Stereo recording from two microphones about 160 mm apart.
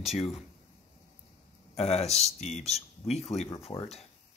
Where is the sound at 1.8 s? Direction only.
40° left (ahead or behind).